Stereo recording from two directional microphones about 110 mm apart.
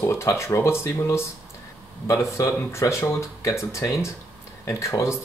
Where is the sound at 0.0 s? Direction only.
25° left (ahead or behind).